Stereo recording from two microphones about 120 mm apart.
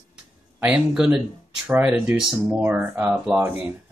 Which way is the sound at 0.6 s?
10° right (ahead or behind).